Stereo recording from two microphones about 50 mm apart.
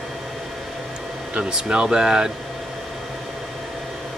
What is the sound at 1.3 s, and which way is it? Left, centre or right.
Speech, centre.